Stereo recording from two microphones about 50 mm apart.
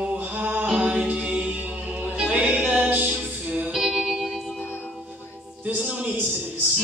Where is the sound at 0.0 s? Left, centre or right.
Right.